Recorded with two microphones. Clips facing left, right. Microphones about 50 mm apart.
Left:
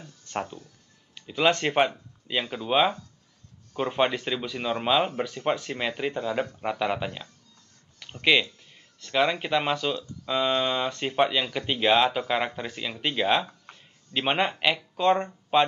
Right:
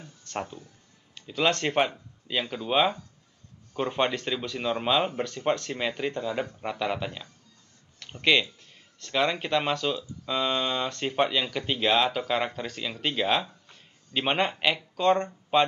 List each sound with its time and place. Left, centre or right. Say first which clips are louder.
0.2 s speech: left 2 dB; centre
13.7 s a sound: left 5 dB; left
14.1 s speech: left 1 dB; centre